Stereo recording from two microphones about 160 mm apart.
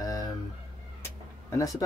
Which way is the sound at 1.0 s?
20° left (ahead or behind).